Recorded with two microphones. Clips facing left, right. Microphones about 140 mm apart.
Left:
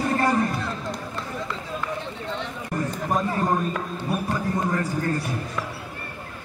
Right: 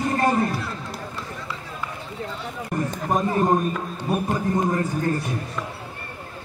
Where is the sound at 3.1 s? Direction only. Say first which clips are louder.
Right 4 dB; 20° right (ahead or behind).